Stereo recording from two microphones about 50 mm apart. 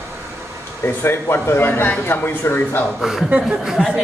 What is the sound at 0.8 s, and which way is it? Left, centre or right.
Speech, left.